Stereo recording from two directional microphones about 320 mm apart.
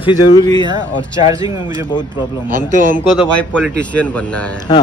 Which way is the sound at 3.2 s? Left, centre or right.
Centre.